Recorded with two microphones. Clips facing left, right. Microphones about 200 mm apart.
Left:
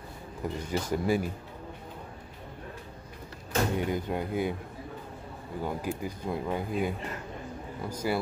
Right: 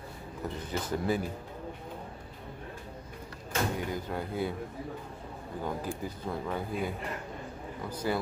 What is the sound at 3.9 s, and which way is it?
Speech, 20° left (ahead or behind).